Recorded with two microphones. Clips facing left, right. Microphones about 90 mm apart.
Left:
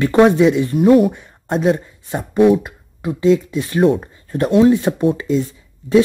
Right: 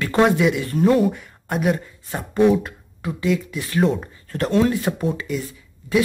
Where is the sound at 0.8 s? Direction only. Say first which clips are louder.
Left 5 dB; 10° left (ahead or behind).